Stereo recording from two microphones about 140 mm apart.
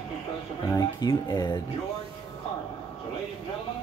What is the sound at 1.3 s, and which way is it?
Speech, 35° left (ahead or behind).